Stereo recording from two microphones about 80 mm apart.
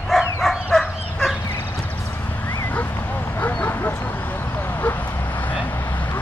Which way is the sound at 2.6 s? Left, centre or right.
Left.